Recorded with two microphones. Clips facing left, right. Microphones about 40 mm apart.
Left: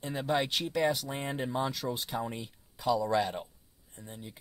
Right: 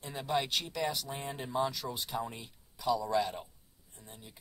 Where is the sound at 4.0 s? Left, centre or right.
Left.